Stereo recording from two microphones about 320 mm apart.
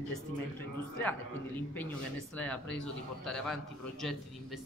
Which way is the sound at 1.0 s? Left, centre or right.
Centre.